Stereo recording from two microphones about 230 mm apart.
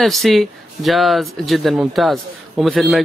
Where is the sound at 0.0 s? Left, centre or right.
Centre.